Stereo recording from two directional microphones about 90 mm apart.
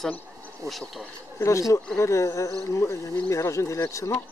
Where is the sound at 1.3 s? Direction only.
35° left (ahead or behind).